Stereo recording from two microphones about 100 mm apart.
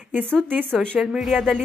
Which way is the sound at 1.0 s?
5° right (ahead or behind).